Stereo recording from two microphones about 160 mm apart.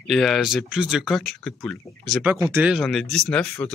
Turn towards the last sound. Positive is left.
turn(degrees=5)  # may be behind; listen again after turning